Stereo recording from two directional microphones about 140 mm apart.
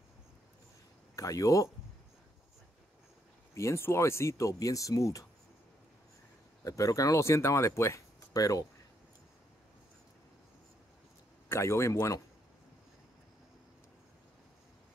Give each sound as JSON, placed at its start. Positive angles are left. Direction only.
{"t": 1.1, "sound": "speech", "side_deg": 25}
{"t": 3.5, "sound": "speech", "side_deg": 20}
{"t": 6.6, "sound": "speech", "side_deg": 25}
{"t": 11.4, "sound": "speech", "side_deg": 20}